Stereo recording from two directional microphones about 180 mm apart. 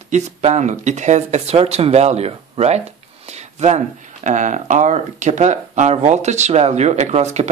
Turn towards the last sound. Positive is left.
turn(degrees=-40)  # may be behind; listen again after turning